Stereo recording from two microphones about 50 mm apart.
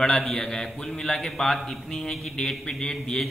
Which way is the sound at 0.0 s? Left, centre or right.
Centre.